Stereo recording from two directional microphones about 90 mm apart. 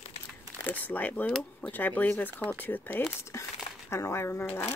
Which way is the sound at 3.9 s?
30° left (ahead or behind).